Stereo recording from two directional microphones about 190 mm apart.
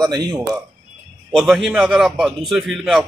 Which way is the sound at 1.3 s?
Centre (ahead or behind).